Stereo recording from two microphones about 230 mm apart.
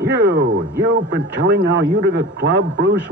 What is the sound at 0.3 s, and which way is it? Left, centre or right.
A man's voice, right.